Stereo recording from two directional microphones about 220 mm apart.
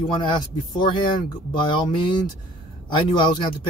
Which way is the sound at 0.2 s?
20° left (ahead or behind).